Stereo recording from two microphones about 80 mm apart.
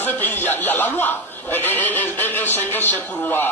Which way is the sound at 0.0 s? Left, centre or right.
Left.